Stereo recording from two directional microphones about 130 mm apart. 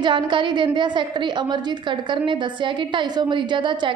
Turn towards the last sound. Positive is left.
turn(degrees=-40)  # may be behind; listen again after turning